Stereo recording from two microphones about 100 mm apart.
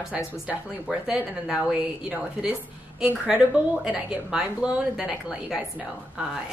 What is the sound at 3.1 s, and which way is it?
Speech, 15° right (ahead or behind).